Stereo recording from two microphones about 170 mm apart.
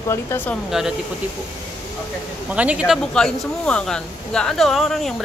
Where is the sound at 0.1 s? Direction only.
15° left (ahead or behind).